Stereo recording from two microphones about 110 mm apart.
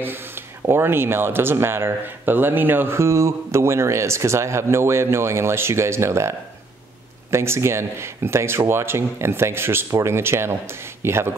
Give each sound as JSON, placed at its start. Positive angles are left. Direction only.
{"t": 0.0, "sound": "speech", "side_deg": -20}